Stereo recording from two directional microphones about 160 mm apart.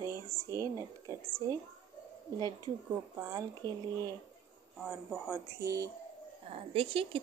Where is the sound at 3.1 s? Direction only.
20° right (ahead or behind).